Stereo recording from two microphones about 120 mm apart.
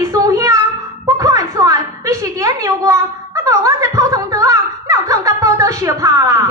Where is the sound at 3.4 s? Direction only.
25° right (ahead or behind).